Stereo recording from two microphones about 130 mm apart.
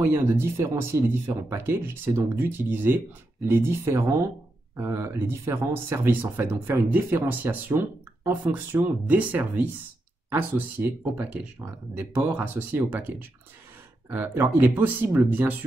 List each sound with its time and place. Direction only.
0.0 s speech: 20° right (ahead or behind)